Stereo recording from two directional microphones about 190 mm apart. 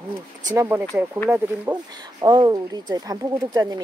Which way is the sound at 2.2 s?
20° right (ahead or behind).